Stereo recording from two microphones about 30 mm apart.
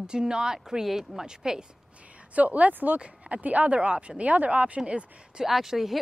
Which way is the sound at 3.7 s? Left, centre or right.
Right.